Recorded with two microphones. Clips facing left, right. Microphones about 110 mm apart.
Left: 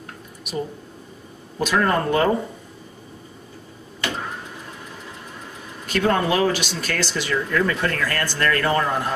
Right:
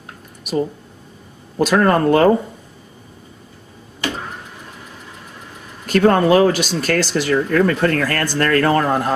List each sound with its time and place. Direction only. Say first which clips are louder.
1.7 s speech: right 6 dB; 45° right (ahead or behind)
5.9 s speech: right 7 dB; 50° right (ahead or behind)